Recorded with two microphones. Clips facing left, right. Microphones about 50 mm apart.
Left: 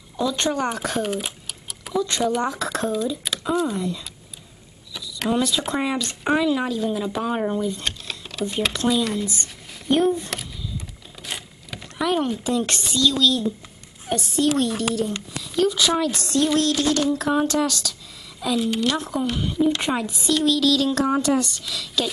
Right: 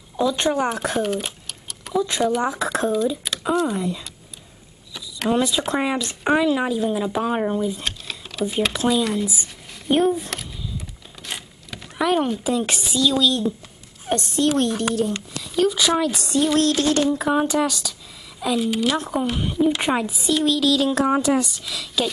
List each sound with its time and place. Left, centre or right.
0.2 s speech: centre
2.0 s speech: centre
4.9 s vehicle: centre
5.3 s speech: centre
11.2 s a sound: centre
12.0 s speech: centre
14.1 s a woman's voice: right
15.0 s speech: centre